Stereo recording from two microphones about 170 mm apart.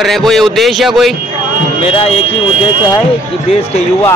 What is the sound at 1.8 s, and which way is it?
Speech, 35° left (ahead or behind).